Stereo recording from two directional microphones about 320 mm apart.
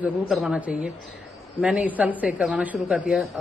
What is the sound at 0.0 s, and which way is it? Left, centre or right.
A woman's voice, centre.